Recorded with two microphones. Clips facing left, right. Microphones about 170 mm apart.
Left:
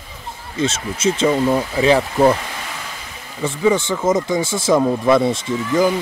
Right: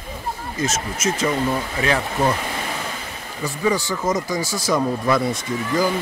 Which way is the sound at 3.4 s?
25° left (ahead or behind).